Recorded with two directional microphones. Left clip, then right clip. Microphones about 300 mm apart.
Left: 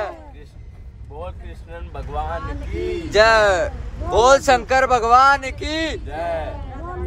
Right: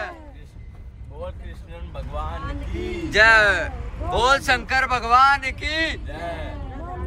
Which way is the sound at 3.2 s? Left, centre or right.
Centre.